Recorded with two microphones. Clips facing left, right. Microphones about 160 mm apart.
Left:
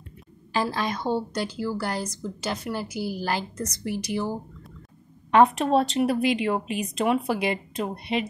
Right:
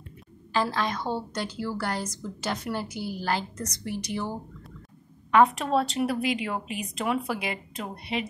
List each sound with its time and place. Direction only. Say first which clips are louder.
0.5 s a woman's voice: left 1 dB; 10° left (ahead or behind)
5.3 s speech: left 3 dB; 25° left (ahead or behind)